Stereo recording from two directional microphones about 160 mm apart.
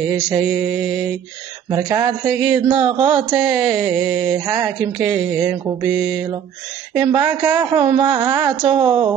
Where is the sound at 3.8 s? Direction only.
10° right (ahead or behind).